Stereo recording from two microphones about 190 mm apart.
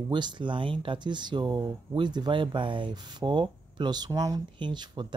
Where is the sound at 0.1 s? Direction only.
25° right (ahead or behind).